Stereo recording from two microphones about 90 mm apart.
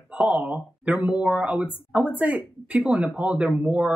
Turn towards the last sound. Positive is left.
turn(degrees=-15)  # may be behind; listen again after turning